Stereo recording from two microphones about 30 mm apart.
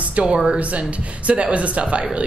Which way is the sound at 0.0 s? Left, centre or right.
Right.